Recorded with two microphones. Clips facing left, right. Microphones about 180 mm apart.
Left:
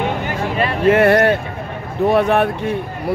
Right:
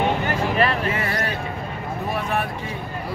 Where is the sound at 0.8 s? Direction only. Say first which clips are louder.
Left 13 dB; 70° left (ahead or behind).